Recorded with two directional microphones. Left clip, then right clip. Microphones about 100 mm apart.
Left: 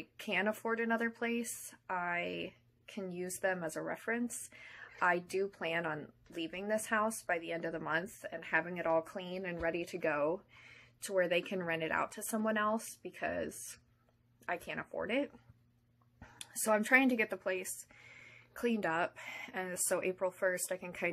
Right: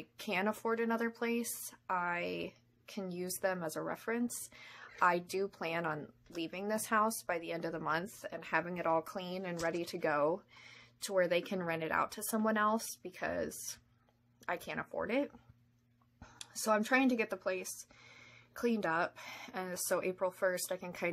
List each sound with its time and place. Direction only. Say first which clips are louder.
0.0 s a woman's voice: left 1 dB; 25° right (ahead or behind)
13.1 s a woman's voice: even; 20° right (ahead or behind)
14.7 s a woman's voice: right 1 dB; 20° right (ahead or behind)
16.2 s a sound: even; 5° left (ahead or behind)
16.7 s a woman's voice: left 2 dB; 15° right (ahead or behind)
17.2 s a woman's voice: left 2 dB; 5° right (ahead or behind)
18.6 s a woman's voice: even; 20° right (ahead or behind)